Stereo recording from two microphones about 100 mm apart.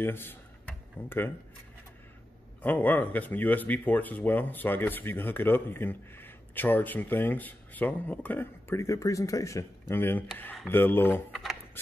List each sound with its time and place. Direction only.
0.0 s speech: 20° left (ahead or behind)
2.6 s speech: 15° left (ahead or behind)